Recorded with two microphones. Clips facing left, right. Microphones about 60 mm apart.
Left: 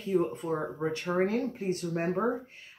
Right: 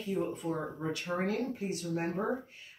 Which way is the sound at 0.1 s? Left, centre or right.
Left.